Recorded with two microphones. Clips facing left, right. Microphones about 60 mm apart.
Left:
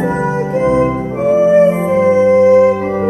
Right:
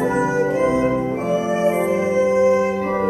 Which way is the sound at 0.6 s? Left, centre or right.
Left.